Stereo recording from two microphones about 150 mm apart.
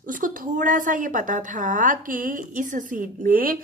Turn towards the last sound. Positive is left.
turn(degrees=-70)  # may be behind; listen again after turning